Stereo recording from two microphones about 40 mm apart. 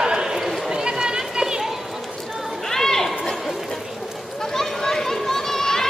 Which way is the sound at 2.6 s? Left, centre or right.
Centre.